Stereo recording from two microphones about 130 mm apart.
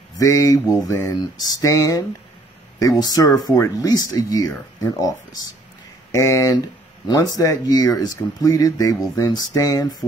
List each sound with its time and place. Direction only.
0.2 s speech: 25° left (ahead or behind)
6.1 s speech: 25° left (ahead or behind)